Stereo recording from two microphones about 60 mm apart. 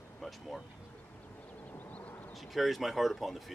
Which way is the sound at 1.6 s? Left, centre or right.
Left.